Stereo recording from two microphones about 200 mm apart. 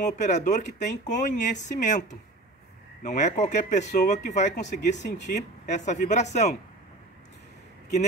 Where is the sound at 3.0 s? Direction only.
35° left (ahead or behind).